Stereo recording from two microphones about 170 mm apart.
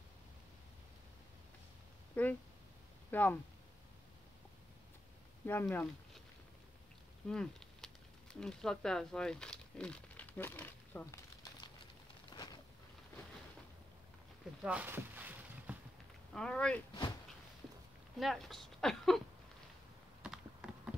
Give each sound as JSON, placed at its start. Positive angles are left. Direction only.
{"t": 2.1, "sound": "speech", "side_deg": 10}
{"t": 5.4, "sound": "speech", "side_deg": 10}
{"t": 7.2, "sound": "speech", "side_deg": 5}
{"t": 12.3, "sound": "a sound", "side_deg": 25}
{"t": 14.6, "sound": "boat", "side_deg": -10}
{"t": 16.3, "sound": "speech", "side_deg": 5}
{"t": 18.2, "sound": "speech", "side_deg": 0}
{"t": 20.2, "sound": "typing", "side_deg": -5}